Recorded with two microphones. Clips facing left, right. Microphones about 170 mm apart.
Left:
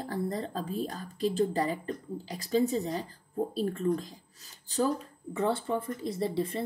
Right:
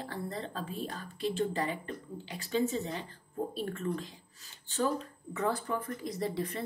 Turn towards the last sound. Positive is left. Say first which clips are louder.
# left 4 dB
turn(degrees=25)  # may be behind; listen again after turning